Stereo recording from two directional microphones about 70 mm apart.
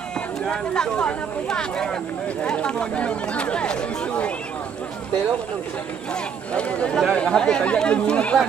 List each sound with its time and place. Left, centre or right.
0.5 s speech: centre
6.5 s speech: centre